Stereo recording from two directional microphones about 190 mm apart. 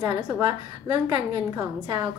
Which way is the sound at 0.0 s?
20° right (ahead or behind).